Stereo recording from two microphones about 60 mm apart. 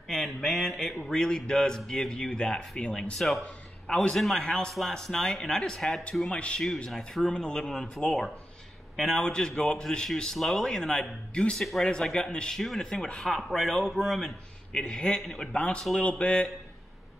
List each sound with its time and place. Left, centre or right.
0.1 s mantra: centre
1.0 s a man's voice: centre
6.3 s a man's voice: centre
14.7 s a man's voice: centre
15.5 s a man's voice: left